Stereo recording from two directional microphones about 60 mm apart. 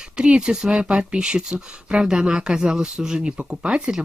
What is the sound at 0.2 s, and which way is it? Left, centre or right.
Speech, centre.